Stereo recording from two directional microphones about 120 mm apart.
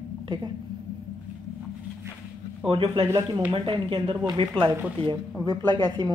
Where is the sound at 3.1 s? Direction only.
25° right (ahead or behind).